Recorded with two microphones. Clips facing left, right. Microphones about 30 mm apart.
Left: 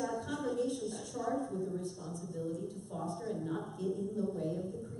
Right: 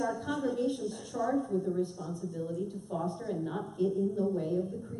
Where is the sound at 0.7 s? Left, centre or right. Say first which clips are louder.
Right 4 dB; centre.